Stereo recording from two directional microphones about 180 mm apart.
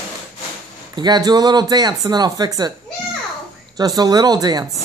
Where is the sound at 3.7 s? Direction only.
20° right (ahead or behind).